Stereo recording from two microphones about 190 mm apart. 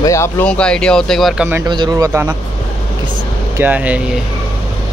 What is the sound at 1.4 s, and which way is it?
Speech, 10° right (ahead or behind).